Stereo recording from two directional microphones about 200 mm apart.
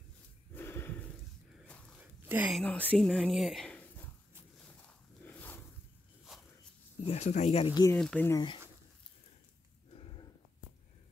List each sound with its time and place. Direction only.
0.6 s a sound: 10° left (ahead or behind)
2.2 s speech: 10° right (ahead or behind)
2.6 s speech: 5° left (ahead or behind)
4.6 s a sound: 5° left (ahead or behind)
6.3 s walk: centre (ahead or behind)
7.1 s speech: 35° left (ahead or behind)
7.9 s speech: 5° left (ahead or behind)